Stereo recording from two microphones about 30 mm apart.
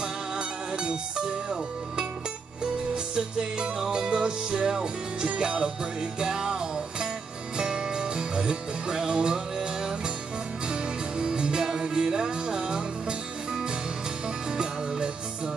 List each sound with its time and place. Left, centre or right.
0.0 s music: right
3.2 s music: right
14.5 s music: right